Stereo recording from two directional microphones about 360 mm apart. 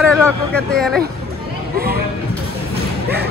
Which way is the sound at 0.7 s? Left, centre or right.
Centre.